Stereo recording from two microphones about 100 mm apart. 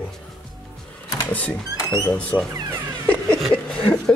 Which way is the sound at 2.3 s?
40° left (ahead or behind).